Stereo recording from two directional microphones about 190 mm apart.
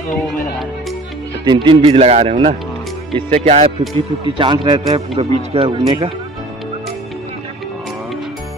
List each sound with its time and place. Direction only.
1.4 s speech: 25° right (ahead or behind)